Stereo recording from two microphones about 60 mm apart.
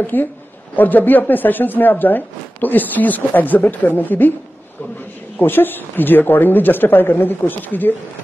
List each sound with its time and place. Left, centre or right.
0.0 s speech: left
5.4 s speech: left